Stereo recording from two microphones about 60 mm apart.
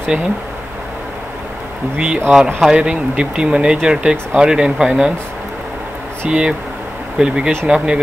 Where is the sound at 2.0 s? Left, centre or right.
Right.